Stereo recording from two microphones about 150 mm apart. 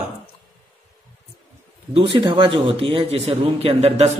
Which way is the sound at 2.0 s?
35° right (ahead or behind).